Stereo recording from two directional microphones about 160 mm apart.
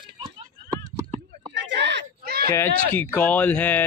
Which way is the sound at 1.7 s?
90° right.